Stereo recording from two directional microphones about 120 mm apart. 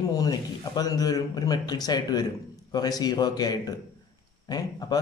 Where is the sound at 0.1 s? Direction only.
30° left (ahead or behind).